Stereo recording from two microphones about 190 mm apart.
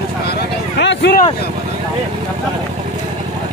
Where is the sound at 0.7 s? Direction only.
65° left (ahead or behind).